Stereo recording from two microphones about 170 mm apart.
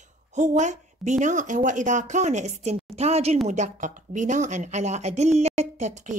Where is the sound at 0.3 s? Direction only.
45° right (ahead or behind).